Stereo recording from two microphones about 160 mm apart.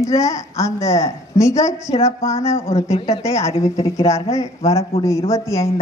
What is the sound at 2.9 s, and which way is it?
Speech, 40° left (ahead or behind).